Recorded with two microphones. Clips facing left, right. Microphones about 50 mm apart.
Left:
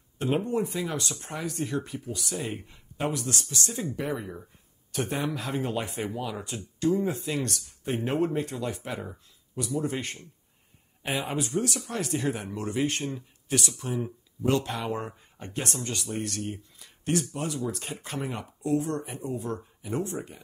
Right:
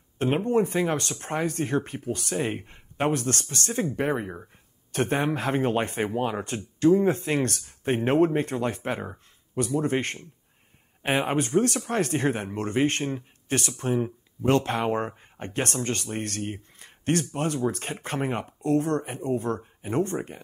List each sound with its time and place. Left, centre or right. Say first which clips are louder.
0.5 s speech: right 6 dB; right